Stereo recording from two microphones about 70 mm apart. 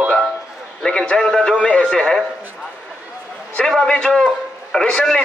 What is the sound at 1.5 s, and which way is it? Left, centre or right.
Speech, centre.